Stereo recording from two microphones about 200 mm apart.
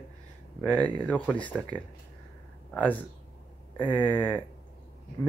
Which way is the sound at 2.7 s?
5° left (ahead or behind).